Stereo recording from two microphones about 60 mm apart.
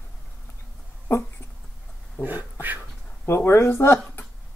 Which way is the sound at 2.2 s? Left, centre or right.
Right.